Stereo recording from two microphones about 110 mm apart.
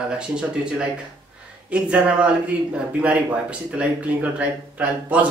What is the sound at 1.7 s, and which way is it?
A man's voice, 10° right (ahead or behind).